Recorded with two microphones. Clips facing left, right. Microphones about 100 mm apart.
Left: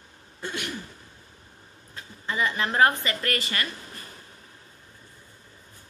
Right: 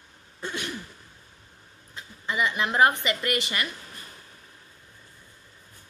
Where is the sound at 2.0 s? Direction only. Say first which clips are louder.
Even; 15° right (ahead or behind).